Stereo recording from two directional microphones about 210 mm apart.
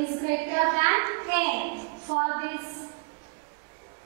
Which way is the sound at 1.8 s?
25° right (ahead or behind).